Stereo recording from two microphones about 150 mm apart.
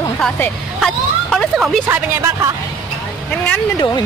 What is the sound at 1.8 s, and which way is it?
Speech, 15° right (ahead or behind).